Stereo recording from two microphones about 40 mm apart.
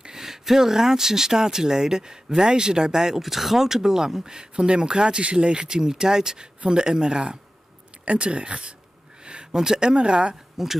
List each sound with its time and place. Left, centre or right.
0.0 s speech: centre
10.6 s speech: centre